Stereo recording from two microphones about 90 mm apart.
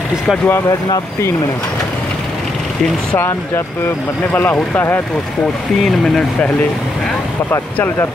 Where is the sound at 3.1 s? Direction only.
25° left (ahead or behind).